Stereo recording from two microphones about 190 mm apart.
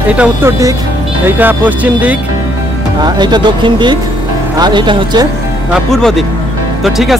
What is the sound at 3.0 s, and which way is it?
Speech, 20° right (ahead or behind).